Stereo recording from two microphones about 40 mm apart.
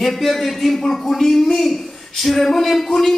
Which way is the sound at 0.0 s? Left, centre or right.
Centre.